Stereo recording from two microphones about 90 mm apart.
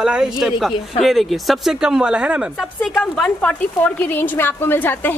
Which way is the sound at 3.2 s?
15° left (ahead or behind).